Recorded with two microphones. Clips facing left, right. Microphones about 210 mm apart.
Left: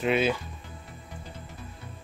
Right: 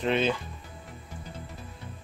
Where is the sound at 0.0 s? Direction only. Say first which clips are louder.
Left 1 dB; 5° left (ahead or behind).